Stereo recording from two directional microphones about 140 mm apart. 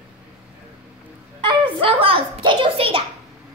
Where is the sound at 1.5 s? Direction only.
40° right (ahead or behind).